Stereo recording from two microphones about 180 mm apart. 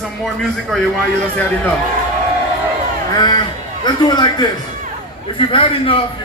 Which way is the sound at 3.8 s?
25° left (ahead or behind).